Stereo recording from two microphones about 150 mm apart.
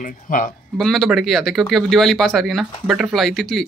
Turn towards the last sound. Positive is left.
turn(degrees=0)  # may be behind; listen again after turning